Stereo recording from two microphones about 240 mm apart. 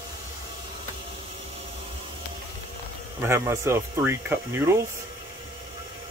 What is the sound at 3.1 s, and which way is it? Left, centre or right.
Speech, centre.